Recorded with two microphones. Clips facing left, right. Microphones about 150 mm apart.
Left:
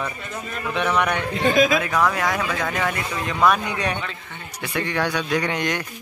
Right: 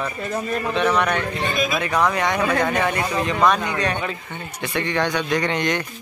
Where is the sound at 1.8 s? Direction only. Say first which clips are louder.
Right 1 dB; centre (ahead or behind).